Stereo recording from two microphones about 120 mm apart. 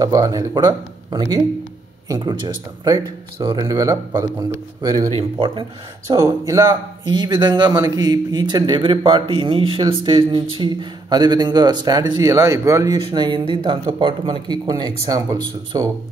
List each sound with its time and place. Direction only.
0.0 s a man's voice: 30° right (ahead or behind)
5.1 s speech: 45° right (ahead or behind)
6.1 s speech: 30° right (ahead or behind)
7.1 s a man's voice: 40° right (ahead or behind); by 12.9 s 25° right (ahead or behind)
12.9 s a man's voice: 40° right (ahead or behind)
14.7 s a man's voice: 35° right (ahead or behind)